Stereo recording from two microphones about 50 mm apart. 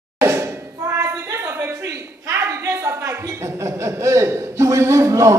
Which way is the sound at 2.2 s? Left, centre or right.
Right.